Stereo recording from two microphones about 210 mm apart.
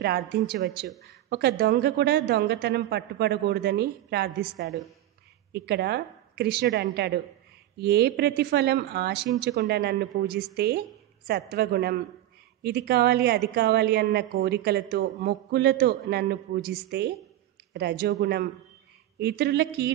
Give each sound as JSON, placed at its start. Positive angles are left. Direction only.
{"t": 0.0, "sound": "a woman's voice", "side_deg": -50}
{"t": 4.6, "sound": "speech", "side_deg": 0}
{"t": 5.5, "sound": "a woman's voice", "side_deg": -50}